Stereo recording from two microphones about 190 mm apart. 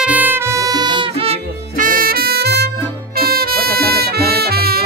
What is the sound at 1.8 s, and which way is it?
Music, 45° right (ahead or behind).